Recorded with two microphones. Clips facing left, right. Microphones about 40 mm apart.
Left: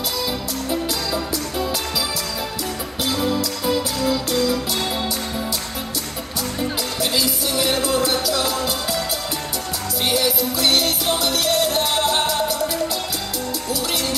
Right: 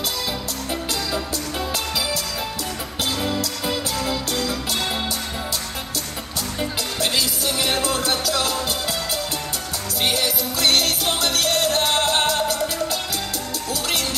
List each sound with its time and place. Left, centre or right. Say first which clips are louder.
3.1 s music: left 4 dB; centre
3.6 s music: left 5 dB; right
7.8 s music: left 2 dB; right
10.1 s music: left 3 dB; right